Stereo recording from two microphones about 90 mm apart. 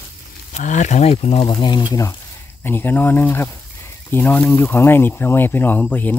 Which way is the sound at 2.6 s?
25° left (ahead or behind).